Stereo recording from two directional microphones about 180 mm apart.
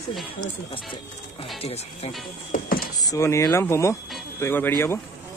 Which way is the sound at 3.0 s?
20° left (ahead or behind).